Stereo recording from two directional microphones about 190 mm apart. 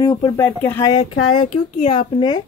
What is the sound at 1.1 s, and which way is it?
Speech, 90° left.